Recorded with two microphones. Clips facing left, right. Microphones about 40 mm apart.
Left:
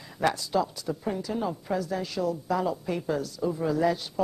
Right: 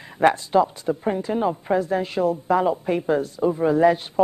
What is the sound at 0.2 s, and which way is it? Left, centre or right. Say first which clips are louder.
Speech: right 8 dB; right.